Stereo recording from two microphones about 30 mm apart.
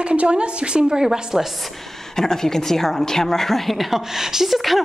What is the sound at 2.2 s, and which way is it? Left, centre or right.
A woman's voice, centre.